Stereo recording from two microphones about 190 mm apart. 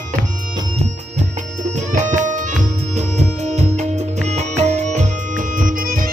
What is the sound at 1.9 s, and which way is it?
Music, 40° right (ahead or behind).